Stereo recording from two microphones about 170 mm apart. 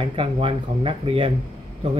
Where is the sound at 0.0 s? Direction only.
35° right (ahead or behind).